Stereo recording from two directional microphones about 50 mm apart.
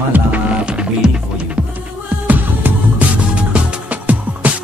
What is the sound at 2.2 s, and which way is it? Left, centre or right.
Music, right.